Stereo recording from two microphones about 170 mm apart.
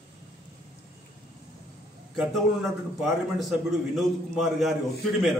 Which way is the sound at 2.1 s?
Centre (ahead or behind).